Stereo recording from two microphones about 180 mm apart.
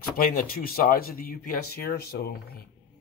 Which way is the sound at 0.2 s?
50° left (ahead or behind).